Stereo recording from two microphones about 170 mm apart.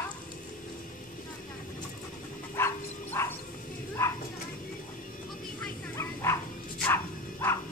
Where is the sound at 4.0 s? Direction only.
15° left (ahead or behind).